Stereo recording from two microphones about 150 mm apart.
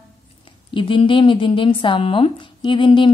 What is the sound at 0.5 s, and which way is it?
A woman's voice, 35° left (ahead or behind).